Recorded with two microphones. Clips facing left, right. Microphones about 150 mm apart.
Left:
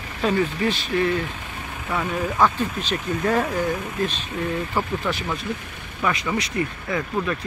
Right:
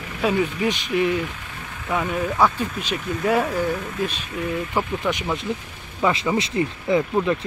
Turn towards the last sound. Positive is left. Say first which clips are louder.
# right 5 dB
turn(degrees=-20)  # may be behind; listen again after turning